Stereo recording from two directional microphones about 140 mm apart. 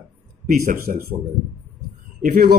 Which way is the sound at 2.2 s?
90° right.